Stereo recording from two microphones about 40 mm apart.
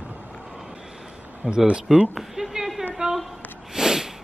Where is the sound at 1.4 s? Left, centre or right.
Centre.